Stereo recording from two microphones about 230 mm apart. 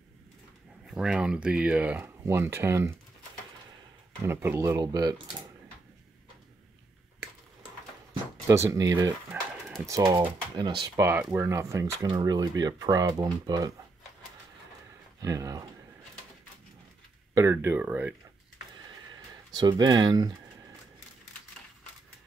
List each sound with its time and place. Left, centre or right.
0.8 s speech: centre
4.2 s speech: centre
8.5 s speech: centre
15.2 s speech: centre
17.3 s speech: centre
19.5 s speech: centre